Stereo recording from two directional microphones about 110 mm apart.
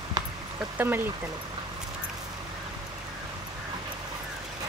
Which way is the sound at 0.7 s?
20° right (ahead or behind).